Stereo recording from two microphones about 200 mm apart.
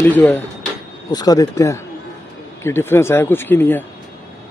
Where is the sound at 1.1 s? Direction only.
20° left (ahead or behind).